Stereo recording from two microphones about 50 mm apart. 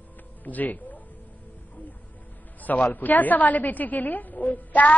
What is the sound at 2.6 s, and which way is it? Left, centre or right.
A woman's voice, left.